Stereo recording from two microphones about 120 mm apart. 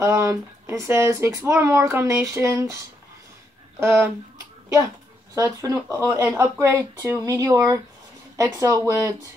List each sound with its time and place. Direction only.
0.0 s speech: 25° right (ahead or behind)
3.8 s speech: 20° right (ahead or behind)
5.3 s speech: 30° right (ahead or behind)